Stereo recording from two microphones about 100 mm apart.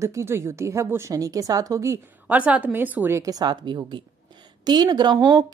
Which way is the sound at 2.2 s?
15° right (ahead or behind).